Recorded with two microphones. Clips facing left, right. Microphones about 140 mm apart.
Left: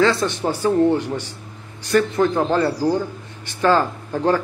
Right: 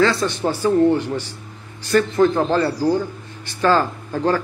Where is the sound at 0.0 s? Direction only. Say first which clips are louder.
Even; 15° left (ahead or behind).